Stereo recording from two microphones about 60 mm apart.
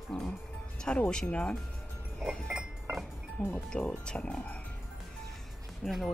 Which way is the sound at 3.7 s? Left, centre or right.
Centre.